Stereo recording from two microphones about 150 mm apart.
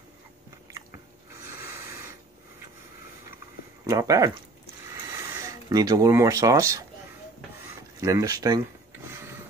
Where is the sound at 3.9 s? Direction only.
20° right (ahead or behind).